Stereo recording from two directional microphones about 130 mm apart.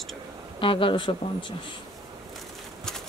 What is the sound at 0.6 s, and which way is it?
Speech, 40° left (ahead or behind).